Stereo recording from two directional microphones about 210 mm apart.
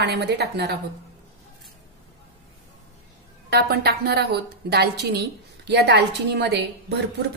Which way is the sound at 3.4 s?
50° right (ahead or behind).